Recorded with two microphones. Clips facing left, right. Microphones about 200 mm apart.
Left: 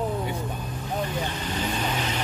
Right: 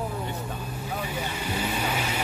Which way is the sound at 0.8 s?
10° right (ahead or behind).